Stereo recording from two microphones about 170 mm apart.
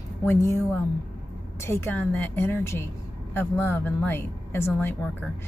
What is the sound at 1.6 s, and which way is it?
A woman's voice, 15° left (ahead or behind).